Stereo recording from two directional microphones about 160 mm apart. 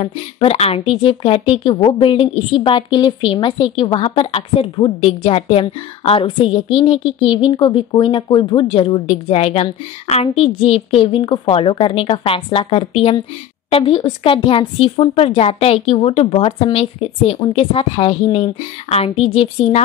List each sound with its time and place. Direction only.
0.0 s speech: 40° left (ahead or behind)